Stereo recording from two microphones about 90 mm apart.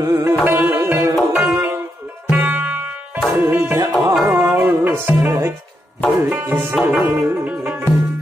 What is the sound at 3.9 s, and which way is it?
Music, centre (ahead or behind).